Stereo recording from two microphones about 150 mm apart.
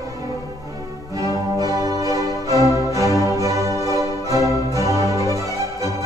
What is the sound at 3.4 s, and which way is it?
Music, 20° right (ahead or behind).